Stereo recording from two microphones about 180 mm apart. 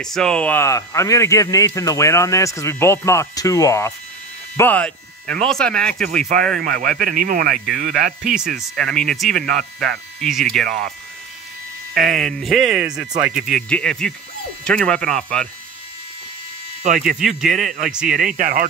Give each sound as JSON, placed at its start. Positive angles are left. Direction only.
{"t": 0.0, "sound": "speech", "side_deg": 5}
{"t": 6.6, "sound": "speech", "side_deg": -55}
{"t": 7.5, "sound": "speech", "side_deg": 0}
{"t": 11.9, "sound": "speech", "side_deg": 0}
{"t": 17.2, "sound": "speech", "side_deg": 0}
{"t": 17.6, "sound": "speech", "side_deg": -50}